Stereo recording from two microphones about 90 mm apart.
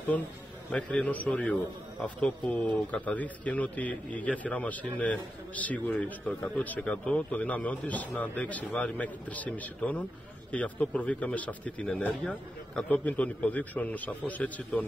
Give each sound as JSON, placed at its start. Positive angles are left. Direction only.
{"t": 0.7, "sound": "speech", "side_deg": 15}